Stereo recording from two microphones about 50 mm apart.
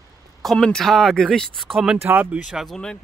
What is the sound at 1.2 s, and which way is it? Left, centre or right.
Speech, centre.